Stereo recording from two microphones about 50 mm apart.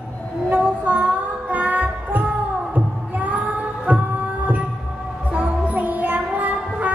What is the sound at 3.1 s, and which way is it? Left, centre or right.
Child singing, right.